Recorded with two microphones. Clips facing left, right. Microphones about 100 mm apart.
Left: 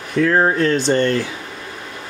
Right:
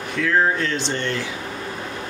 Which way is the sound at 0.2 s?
40° left (ahead or behind).